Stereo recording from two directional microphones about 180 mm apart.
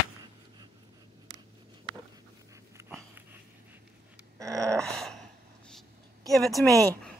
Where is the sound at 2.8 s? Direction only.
15° right (ahead or behind).